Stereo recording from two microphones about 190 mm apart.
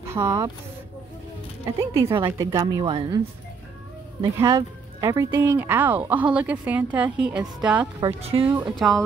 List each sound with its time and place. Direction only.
0.0 s speech: 15° right (ahead or behind)
1.8 s a woman's voice: 15° right (ahead or behind)
4.2 s a woman's voice: 25° right (ahead or behind); by 7.9 s 5° right (ahead or behind)
8.2 s a woman's voice: 30° right (ahead or behind)
8.7 s speech: centre (ahead or behind)